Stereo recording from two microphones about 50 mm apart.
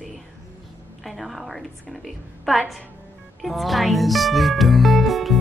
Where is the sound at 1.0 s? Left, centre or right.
Centre.